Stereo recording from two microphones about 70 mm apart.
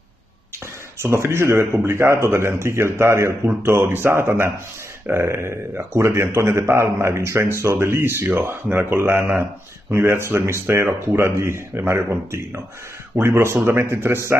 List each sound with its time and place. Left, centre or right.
0.9 s speech: right